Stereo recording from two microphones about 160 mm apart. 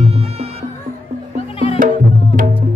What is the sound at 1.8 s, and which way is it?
Music, 55° right (ahead or behind).